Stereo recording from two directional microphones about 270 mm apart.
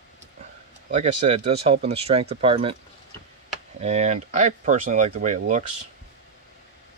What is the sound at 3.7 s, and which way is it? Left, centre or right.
Speech, right.